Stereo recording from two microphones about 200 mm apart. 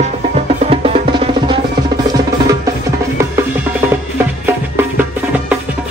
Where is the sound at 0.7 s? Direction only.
30° right (ahead or behind).